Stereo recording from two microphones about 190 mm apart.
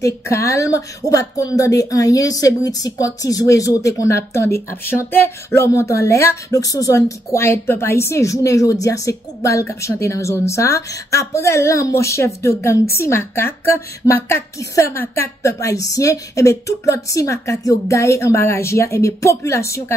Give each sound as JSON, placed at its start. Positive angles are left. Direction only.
{"t": 0.0, "sound": "a woman's voice", "side_deg": 15}